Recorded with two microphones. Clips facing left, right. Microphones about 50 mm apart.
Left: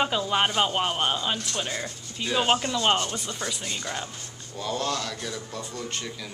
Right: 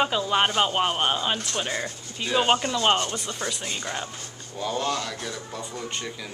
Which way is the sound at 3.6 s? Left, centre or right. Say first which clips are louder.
Right 1 dB; centre.